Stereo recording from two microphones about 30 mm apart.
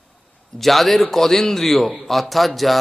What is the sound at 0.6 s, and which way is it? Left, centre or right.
A man's voice, centre.